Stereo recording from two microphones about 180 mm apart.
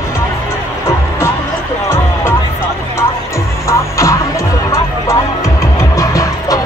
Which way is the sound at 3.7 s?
15° left (ahead or behind).